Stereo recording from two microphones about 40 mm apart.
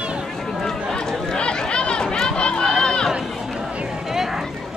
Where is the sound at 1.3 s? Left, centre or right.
Left.